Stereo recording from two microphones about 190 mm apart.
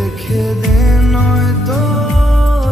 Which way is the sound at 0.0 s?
Centre (ahead or behind).